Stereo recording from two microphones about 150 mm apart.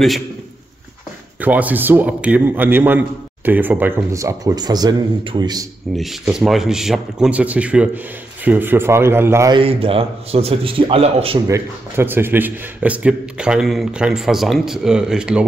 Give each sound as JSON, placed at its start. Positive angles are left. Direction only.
{"t": 1.4, "sound": "a man's voice", "side_deg": -10}
{"t": 5.9, "sound": "a man's voice", "side_deg": 0}
{"t": 9.5, "sound": "a man's voice", "side_deg": -40}
{"t": 11.4, "sound": "a man's voice", "side_deg": -15}